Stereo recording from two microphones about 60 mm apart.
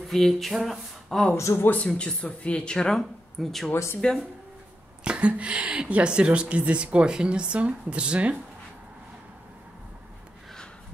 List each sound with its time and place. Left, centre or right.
0.1 s a sound: centre
1.3 s speech: left
1.9 s speech: centre
4.0 s speech: centre
5.0 s a woman's voice: centre